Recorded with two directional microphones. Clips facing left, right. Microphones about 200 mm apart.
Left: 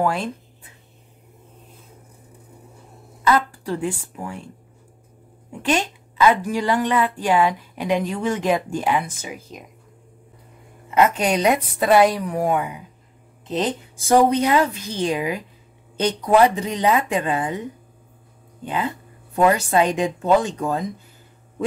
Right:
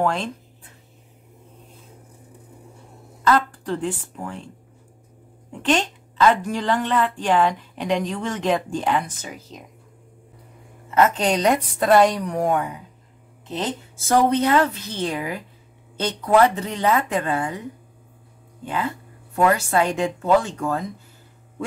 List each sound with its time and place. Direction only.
0.0 s a woman's voice: 5° left (ahead or behind)
3.3 s a woman's voice: 10° left (ahead or behind)
5.5 s a woman's voice: 10° left (ahead or behind)
10.9 s a woman's voice: 15° left (ahead or behind)
18.7 s speech: 20° left (ahead or behind)